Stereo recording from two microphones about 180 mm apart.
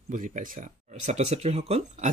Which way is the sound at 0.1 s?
45° right (ahead or behind).